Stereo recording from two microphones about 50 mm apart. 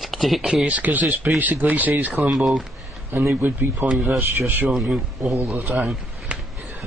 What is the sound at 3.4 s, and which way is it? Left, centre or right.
Speech, right.